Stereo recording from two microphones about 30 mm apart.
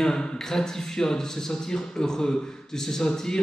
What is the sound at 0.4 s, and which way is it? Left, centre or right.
A man's voice, centre.